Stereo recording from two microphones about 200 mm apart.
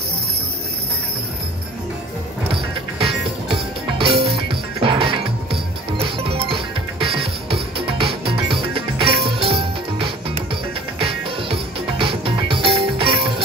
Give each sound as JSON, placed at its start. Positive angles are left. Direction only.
{"t": 3.1, "sound": "music", "side_deg": 0}
{"t": 4.0, "sound": "music", "side_deg": -30}